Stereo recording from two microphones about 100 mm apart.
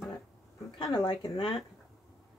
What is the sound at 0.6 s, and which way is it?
Speech, 45° left (ahead or behind).